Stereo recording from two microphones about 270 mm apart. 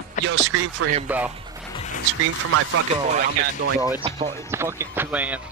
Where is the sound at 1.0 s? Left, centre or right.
Centre.